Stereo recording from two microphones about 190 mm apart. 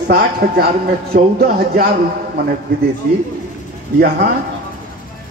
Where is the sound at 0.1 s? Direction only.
55° right (ahead or behind).